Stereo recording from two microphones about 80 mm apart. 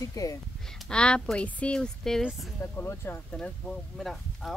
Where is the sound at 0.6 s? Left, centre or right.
Centre.